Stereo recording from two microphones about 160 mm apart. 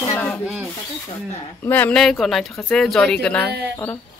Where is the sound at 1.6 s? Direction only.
10° left (ahead or behind).